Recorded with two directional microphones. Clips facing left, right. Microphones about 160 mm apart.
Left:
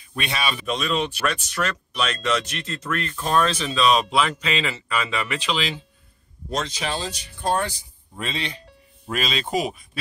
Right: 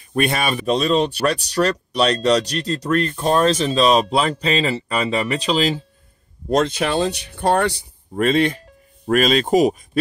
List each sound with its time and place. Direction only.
0.1 s speech: 50° right (ahead or behind)
0.7 s speech: 35° right (ahead or behind)
6.5 s speech: 55° right (ahead or behind)
8.1 s speech: 50° right (ahead or behind)